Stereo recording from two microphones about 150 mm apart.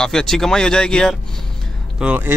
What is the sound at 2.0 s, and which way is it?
Speech, 10° right (ahead or behind).